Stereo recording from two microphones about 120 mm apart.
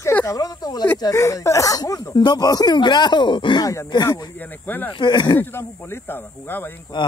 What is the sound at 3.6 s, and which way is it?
Speech, 30° left (ahead or behind).